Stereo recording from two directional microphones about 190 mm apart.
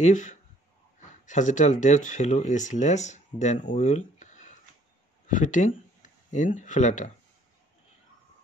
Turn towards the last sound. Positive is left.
turn(degrees=40)  # may be behind; listen again after turning